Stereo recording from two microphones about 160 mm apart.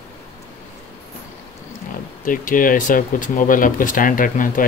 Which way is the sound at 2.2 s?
60° left (ahead or behind).